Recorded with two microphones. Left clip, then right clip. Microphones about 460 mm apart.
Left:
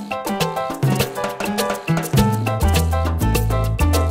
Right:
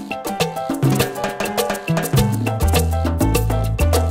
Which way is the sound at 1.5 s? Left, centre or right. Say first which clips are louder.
Right 1 dB; right.